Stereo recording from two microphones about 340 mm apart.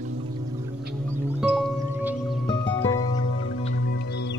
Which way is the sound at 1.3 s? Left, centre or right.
Centre.